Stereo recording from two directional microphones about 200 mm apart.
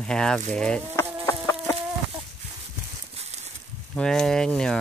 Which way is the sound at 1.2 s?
10° left (ahead or behind).